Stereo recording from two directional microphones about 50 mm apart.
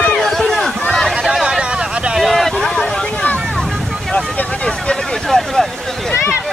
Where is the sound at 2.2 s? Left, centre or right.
Centre.